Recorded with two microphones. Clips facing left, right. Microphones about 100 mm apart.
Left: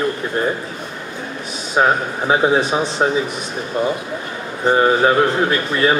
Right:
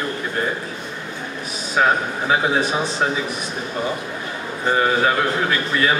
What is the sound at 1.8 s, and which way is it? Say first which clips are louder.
A man's voice: left 2 dB; 25° left (ahead or behind).